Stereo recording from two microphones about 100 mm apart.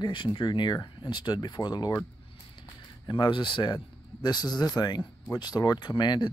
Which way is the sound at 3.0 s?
50° left (ahead or behind).